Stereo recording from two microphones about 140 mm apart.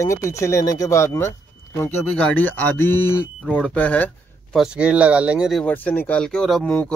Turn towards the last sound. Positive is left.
turn(degrees=5)  # may be behind; listen again after turning